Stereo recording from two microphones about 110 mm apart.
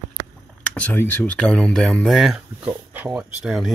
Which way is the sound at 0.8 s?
15° left (ahead or behind).